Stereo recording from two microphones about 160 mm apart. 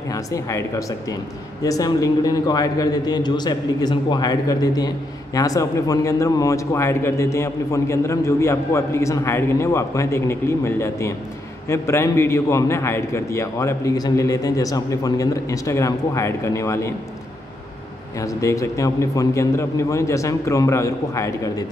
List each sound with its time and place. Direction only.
0.1 s a man's voice: 20° left (ahead or behind)
18.2 s a man's voice: 20° left (ahead or behind)